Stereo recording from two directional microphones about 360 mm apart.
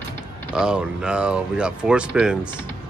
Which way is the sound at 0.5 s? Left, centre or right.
Centre.